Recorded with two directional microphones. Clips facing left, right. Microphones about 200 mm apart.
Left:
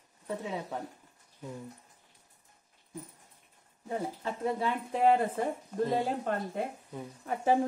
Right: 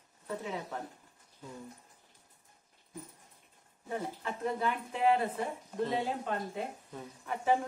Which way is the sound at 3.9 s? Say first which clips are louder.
Left 3 dB; 30° left (ahead or behind).